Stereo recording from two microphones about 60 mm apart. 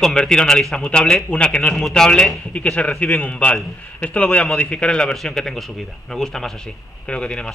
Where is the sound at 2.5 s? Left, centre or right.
Left.